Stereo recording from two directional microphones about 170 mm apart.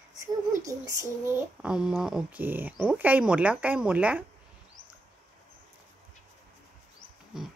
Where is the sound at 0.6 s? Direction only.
20° right (ahead or behind).